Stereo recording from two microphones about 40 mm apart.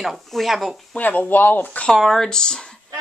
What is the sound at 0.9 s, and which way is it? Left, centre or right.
Speech, left.